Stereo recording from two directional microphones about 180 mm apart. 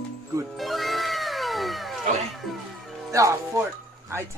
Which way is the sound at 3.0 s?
20° right (ahead or behind).